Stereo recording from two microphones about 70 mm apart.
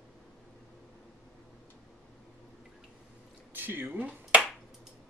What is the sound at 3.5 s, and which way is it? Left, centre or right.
Finger snapping, right.